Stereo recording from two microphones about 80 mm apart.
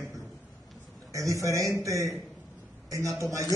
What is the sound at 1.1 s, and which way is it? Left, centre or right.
A man's voice, right.